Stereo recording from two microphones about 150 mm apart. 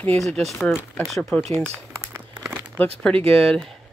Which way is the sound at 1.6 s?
15° right (ahead or behind).